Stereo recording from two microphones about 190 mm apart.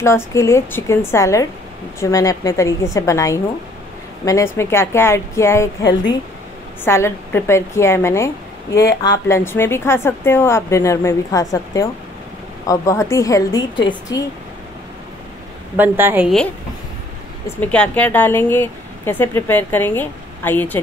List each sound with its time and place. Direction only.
0.0 s speech: 15° left (ahead or behind)
15.7 s a woman's voice: 10° right (ahead or behind)
17.6 s speech: 5° left (ahead or behind)